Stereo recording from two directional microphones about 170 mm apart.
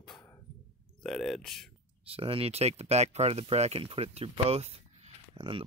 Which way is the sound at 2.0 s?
35° right (ahead or behind).